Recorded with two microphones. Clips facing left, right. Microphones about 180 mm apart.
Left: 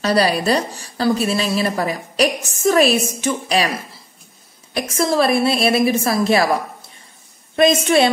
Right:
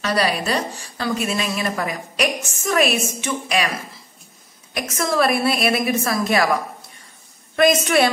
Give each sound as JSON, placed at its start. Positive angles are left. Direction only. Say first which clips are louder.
{"t": 0.0, "sound": "a woman's voice", "louder": "left 4 dB", "side_deg": 35}
{"t": 4.7, "sound": "a woman's voice", "louder": "left 3 dB", "side_deg": 30}